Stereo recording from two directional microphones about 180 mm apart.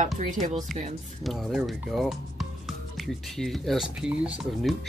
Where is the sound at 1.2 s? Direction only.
Centre (ahead or behind).